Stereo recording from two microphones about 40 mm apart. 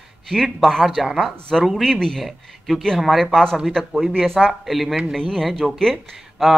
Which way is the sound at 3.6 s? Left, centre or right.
Centre.